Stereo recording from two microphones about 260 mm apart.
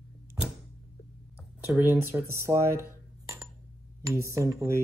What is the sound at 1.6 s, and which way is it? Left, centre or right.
Dishes, centre.